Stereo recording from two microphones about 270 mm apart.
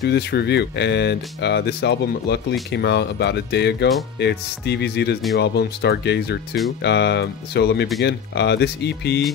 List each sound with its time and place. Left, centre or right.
0.0 s speech: left